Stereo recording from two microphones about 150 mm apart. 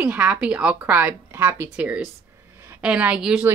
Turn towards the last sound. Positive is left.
turn(degrees=-5)  # may be behind; listen again after turning